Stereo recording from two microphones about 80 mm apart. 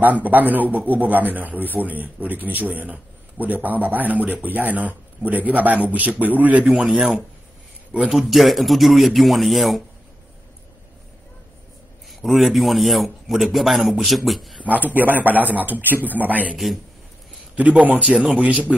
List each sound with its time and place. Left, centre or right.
0.0 s a man's voice: right
8.1 s a man's voice: centre
12.1 s a man's voice: centre
14.6 s a man's voice: centre
17.6 s speech: centre